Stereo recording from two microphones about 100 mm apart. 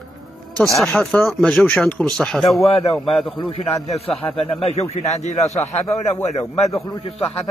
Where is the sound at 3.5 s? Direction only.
75° left (ahead or behind); by 5.2 s 90° left.